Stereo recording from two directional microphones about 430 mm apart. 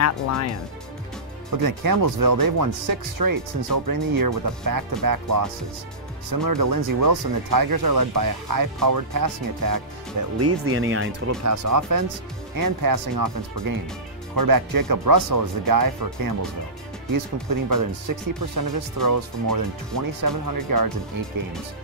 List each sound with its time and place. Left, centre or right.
0.0 s speech: left
1.6 s speech: right
10.4 s speech: right
11.5 s speech: right